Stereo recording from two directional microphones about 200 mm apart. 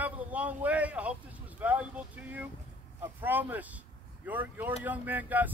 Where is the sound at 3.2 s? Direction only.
10° right (ahead or behind).